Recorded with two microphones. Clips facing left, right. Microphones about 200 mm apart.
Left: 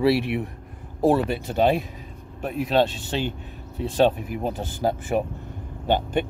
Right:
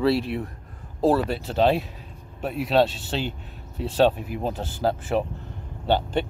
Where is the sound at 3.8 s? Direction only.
10° left (ahead or behind).